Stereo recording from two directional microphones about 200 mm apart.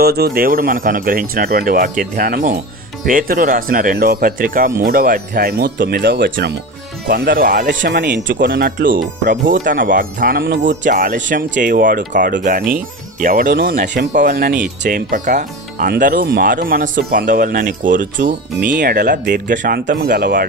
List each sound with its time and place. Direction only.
0.0 s speech: 50° right (ahead or behind)
7.1 s speech: 45° right (ahead or behind)
10.8 s speech: 40° right (ahead or behind)
19.5 s speech: 40° right (ahead or behind)